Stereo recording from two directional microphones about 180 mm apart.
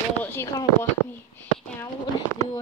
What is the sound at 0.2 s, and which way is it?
Speech, 15° left (ahead or behind).